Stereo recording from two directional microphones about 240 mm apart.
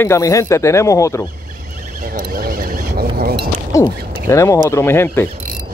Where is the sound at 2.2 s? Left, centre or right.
Right.